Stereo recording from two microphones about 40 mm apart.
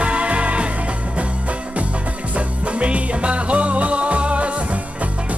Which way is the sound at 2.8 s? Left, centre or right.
Right.